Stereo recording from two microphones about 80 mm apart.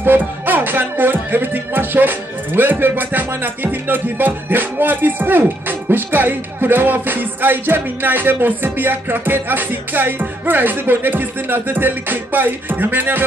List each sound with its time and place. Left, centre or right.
0.0 s music: right